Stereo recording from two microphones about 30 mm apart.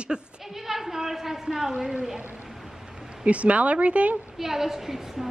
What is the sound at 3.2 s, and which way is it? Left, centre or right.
Speech, right.